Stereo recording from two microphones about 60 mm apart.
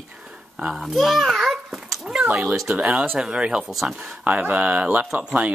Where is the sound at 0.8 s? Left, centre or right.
Centre.